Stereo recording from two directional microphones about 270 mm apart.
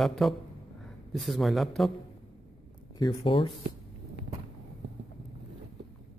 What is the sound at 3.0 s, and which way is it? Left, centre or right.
Speech, centre.